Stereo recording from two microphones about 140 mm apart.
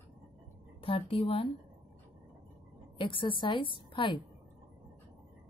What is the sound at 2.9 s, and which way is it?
A woman's voice, 35° left (ahead or behind).